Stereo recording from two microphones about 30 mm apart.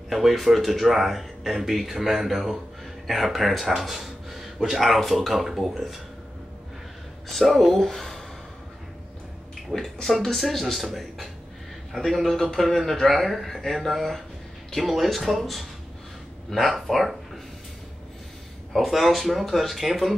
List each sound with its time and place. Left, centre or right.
0.1 s speech: centre
7.3 s speech: centre
9.7 s speech: centre
16.4 s speech: centre
18.9 s speech: centre